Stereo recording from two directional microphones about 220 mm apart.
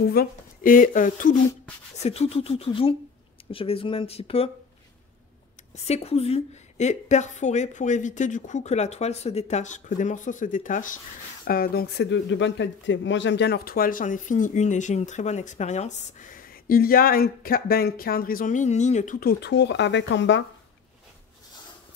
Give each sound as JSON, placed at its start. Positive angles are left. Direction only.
{"t": 0.1, "sound": "speech", "side_deg": 40}
{"t": 5.9, "sound": "speech", "side_deg": 30}